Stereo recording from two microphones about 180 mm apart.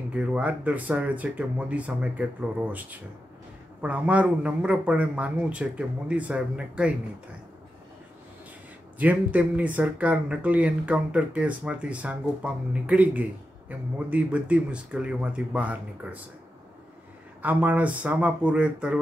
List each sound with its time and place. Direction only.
0.1 s speech: 5° right (ahead or behind)
8.9 s speech: 10° right (ahead or behind)
17.4 s speech: 10° right (ahead or behind)